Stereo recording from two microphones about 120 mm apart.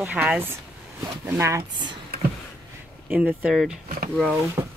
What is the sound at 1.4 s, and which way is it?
Speech, 25° right (ahead or behind).